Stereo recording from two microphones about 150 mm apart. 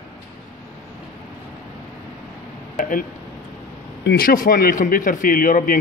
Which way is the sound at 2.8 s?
65° left (ahead or behind).